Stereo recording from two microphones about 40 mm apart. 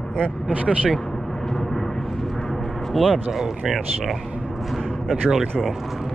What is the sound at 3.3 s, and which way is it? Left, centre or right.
Speech, centre.